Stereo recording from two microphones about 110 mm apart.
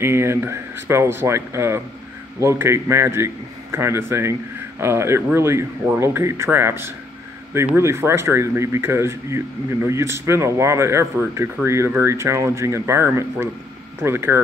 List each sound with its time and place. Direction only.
0.0 s speech: 25° right (ahead or behind)